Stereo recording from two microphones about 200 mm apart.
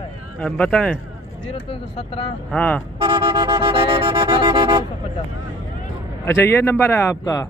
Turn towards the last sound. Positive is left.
turn(degrees=15)  # may be behind; listen again after turning